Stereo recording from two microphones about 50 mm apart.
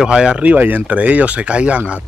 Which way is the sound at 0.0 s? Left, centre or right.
Centre.